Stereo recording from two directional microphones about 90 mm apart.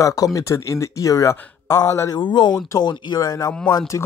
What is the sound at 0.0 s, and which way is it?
Speech, 40° left (ahead or behind).